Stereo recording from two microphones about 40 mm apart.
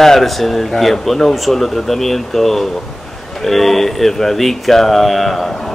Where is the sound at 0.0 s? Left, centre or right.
Centre.